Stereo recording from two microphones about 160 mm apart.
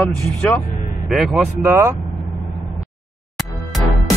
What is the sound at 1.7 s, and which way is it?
Speech, 15° right (ahead or behind).